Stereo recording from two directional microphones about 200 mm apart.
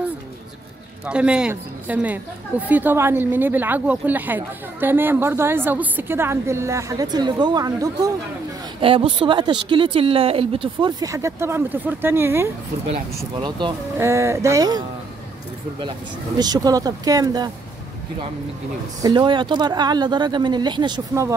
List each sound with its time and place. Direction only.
1.0 s speech: 5° right (ahead or behind)
13.4 s speech: 25° right (ahead or behind)
16.3 s speech: 20° right (ahead or behind)
18.9 s speech: 20° right (ahead or behind)